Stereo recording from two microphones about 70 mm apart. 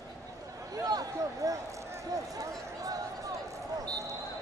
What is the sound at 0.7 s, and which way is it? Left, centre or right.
A man's voice, right.